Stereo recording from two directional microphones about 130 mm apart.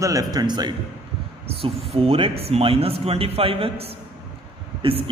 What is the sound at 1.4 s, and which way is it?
Speech, 50° right (ahead or behind).